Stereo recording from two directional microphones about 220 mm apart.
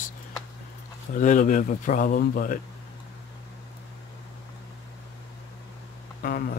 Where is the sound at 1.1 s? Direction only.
35° left (ahead or behind).